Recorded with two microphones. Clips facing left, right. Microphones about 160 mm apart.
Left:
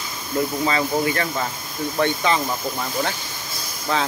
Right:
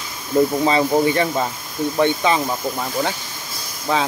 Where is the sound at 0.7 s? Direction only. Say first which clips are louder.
Right 5 dB; 20° right (ahead or behind).